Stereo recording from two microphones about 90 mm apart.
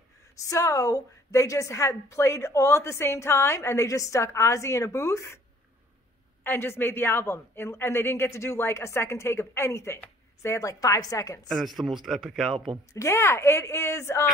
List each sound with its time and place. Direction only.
0.4 s a woman's voice: 35° left (ahead or behind)
6.4 s a man's voice: 25° left (ahead or behind); by 11.4 s 40° left (ahead or behind)
11.4 s speech: centre (ahead or behind)
12.9 s a woman's voice: 35° left (ahead or behind)